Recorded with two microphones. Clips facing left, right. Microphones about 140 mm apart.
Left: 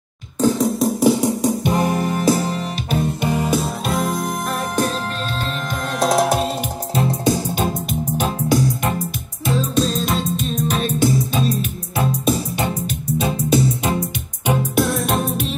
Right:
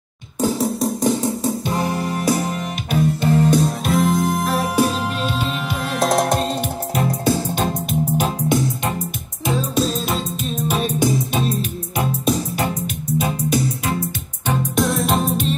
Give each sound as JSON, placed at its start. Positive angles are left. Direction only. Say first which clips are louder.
{"t": 0.4, "sound": "music", "louder": "left 3 dB", "side_deg": 0}
{"t": 1.2, "sound": "music", "louder": "left 3 dB", "side_deg": 15}
{"t": 3.1, "sound": "music", "louder": "right 6 dB", "side_deg": 15}
{"t": 6.9, "sound": "music", "louder": "left 2 dB", "side_deg": 30}
{"t": 7.2, "sound": "music", "louder": "even", "side_deg": 15}
{"t": 8.5, "sound": "music", "louder": "left 4 dB", "side_deg": -25}
{"t": 9.5, "sound": "music", "louder": "left 1 dB", "side_deg": -10}
{"t": 12.5, "sound": "music", "louder": "even", "side_deg": 30}
{"t": 14.4, "sound": "music", "louder": "left 2 dB", "side_deg": 15}
{"t": 14.8, "sound": "music", "louder": "right 3 dB", "side_deg": 0}